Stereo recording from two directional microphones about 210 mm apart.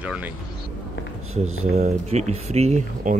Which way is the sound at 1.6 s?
35° right (ahead or behind).